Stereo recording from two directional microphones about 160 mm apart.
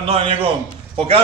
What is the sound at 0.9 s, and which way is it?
Speech, 35° right (ahead or behind).